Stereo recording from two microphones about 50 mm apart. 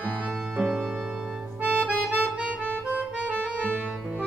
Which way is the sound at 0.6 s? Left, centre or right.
Centre.